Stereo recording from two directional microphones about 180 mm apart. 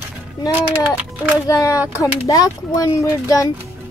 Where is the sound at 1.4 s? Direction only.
15° left (ahead or behind).